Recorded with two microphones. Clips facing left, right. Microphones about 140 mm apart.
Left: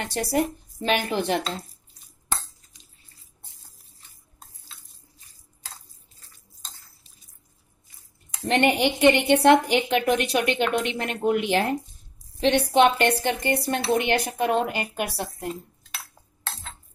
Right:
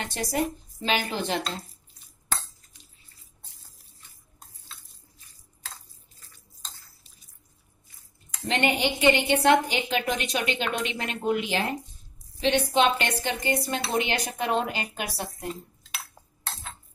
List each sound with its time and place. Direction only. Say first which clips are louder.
0.1 s a woman's voice: left 4 dB; 65° left (ahead or behind)
8.5 s a woman's voice: left 4 dB; 60° left (ahead or behind)